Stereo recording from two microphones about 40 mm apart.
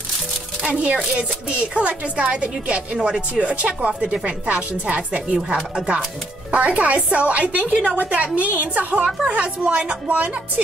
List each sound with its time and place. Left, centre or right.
0.7 s a woman's voice: right
6.5 s a woman's voice: right